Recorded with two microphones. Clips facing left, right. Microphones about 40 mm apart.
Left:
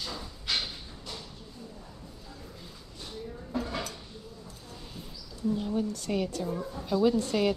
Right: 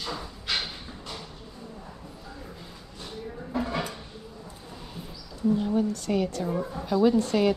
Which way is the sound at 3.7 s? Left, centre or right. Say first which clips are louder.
Right 5 dB; centre.